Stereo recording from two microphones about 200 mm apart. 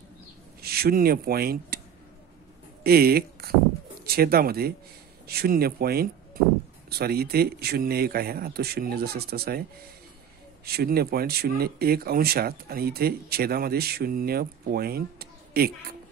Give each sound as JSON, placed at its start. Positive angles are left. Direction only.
{"t": 0.6, "sound": "speech", "side_deg": -50}
{"t": 2.8, "sound": "speech", "side_deg": -50}